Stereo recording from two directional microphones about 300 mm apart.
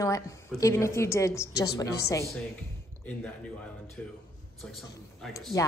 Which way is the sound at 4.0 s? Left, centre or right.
Centre.